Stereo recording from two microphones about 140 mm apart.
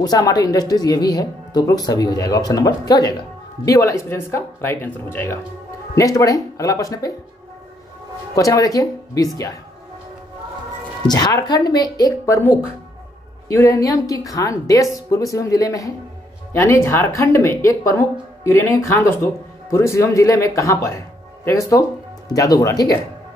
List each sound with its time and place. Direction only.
0.0 s speech: 25° left (ahead or behind)
8.4 s speech: 25° left (ahead or behind)
11.1 s speech: 30° left (ahead or behind)
13.5 s speech: 20° left (ahead or behind)